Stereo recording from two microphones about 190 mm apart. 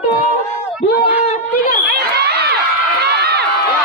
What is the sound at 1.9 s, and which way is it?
Crowd, 55° right (ahead or behind).